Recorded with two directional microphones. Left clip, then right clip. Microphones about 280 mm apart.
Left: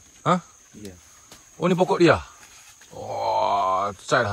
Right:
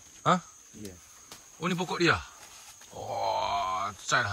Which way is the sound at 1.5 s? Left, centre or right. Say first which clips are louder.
Left 11 dB; centre.